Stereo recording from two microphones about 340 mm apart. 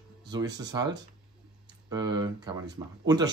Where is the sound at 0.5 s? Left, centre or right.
Centre.